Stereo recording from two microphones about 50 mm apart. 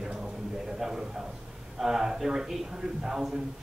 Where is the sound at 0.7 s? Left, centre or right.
Centre.